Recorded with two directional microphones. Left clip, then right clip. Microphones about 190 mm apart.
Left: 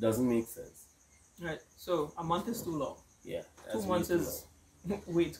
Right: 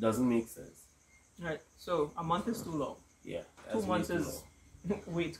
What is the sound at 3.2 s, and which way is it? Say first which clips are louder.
Speech: left 1 dB; 15° left (ahead or behind).